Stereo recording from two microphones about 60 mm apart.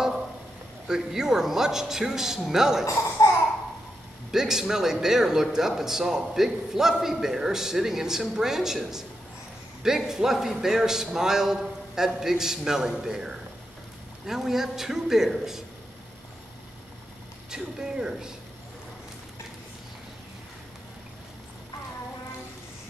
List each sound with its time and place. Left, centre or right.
0.8 s a man's voice: centre
2.8 s speech: left
4.3 s a man's voice: centre
17.5 s a man's voice: centre